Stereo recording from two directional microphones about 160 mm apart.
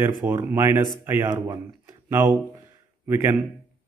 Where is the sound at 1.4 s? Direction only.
25° right (ahead or behind).